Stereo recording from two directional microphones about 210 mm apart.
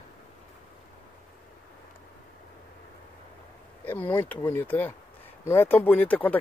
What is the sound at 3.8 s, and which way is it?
Speech, 10° left (ahead or behind).